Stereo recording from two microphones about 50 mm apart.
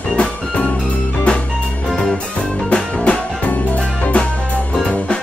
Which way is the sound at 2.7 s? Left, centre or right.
Left.